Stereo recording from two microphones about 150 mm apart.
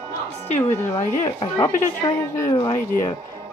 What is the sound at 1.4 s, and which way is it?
Speech, 30° left (ahead or behind).